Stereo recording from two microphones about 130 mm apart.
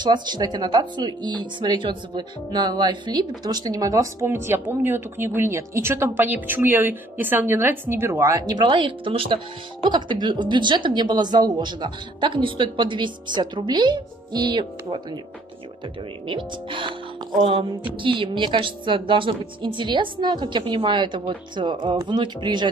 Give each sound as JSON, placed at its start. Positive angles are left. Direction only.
{"t": 0.0, "sound": "speech", "side_deg": -35}
{"t": 16.3, "sound": "speech", "side_deg": -40}
{"t": 17.9, "sound": "speech", "side_deg": -40}